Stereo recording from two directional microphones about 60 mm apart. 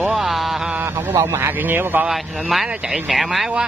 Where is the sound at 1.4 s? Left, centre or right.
Right.